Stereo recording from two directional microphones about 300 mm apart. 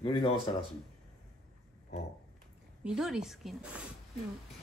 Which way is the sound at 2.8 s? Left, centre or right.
Centre.